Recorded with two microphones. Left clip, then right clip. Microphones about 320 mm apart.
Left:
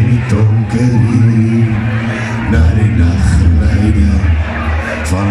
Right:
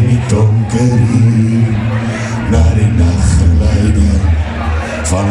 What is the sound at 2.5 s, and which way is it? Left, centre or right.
Speech, right.